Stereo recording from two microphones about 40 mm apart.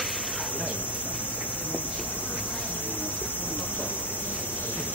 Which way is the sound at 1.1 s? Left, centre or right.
Right.